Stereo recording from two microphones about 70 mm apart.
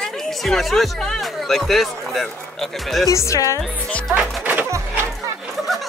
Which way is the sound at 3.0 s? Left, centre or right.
Left.